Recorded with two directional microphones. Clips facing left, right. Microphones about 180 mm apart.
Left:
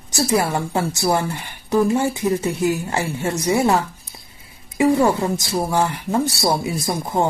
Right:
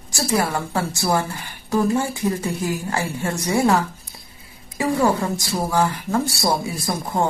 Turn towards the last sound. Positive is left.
turn(degrees=20)  # may be behind; listen again after turning